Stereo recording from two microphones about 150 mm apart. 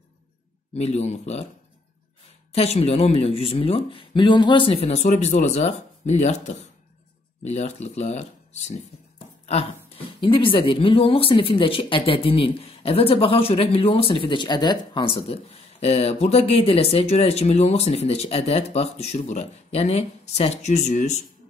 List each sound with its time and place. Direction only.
0.7 s speech: 45° left (ahead or behind)
2.5 s speech: 40° left (ahead or behind)
9.5 s speech: 40° left (ahead or behind)